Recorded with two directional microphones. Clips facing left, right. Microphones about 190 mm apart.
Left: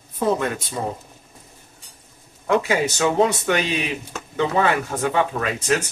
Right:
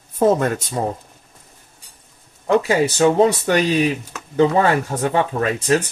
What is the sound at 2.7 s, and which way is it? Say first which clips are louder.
Speech: right 5 dB; 30° right (ahead or behind).